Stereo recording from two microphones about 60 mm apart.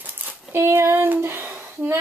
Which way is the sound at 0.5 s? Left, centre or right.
Right.